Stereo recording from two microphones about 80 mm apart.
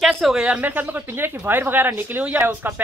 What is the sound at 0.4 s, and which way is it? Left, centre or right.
Speech, centre.